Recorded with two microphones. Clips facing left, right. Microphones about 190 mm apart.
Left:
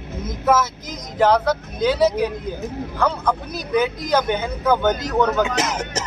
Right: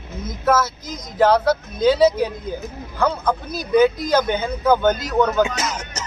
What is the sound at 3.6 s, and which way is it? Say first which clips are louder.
Speech: right 9 dB; 15° left (ahead or behind).